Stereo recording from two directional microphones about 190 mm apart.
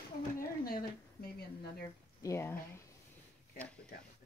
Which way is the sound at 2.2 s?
15° left (ahead or behind).